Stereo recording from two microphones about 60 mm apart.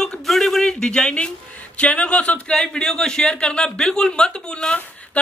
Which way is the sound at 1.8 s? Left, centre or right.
Centre.